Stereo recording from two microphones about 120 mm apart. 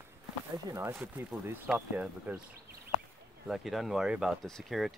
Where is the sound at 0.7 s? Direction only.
20° right (ahead or behind).